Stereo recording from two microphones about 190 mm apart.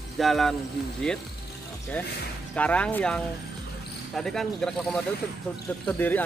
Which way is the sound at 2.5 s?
5° left (ahead or behind).